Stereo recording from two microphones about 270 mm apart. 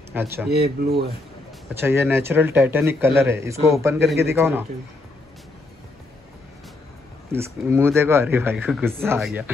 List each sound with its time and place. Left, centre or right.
0.1 s speech: centre
0.5 s speech: right
1.8 s speech: centre
7.3 s speech: centre